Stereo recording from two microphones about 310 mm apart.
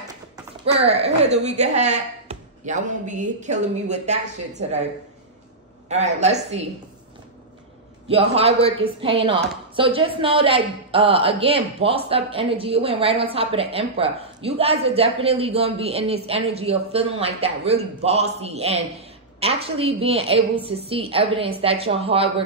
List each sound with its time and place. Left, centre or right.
0.8 s speech: centre
5.9 s speech: right
8.1 s speech: centre